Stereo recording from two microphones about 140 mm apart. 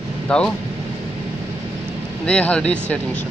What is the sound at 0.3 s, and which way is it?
Speech, 5° left (ahead or behind).